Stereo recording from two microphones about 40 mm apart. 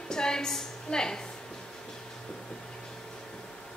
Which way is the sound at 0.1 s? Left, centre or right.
Centre.